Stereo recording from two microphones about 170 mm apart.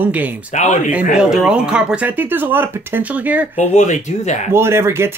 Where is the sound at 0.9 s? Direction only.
5° right (ahead or behind).